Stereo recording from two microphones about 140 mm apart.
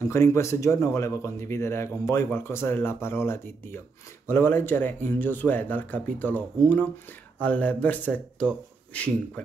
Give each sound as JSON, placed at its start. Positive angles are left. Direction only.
{"t": 0.0, "sound": "speech", "side_deg": 20}